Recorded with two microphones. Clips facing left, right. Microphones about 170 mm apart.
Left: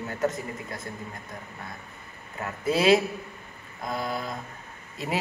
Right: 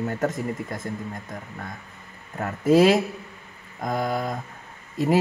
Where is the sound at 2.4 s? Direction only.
50° right (ahead or behind).